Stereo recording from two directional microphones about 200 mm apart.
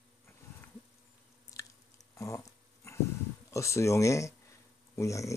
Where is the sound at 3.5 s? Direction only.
15° left (ahead or behind).